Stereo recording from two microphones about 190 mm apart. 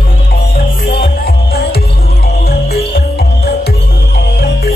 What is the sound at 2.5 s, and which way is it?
Music, 55° left (ahead or behind).